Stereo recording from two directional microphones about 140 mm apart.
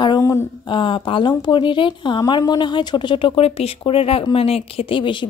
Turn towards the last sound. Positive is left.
turn(degrees=35)  # may be behind; listen again after turning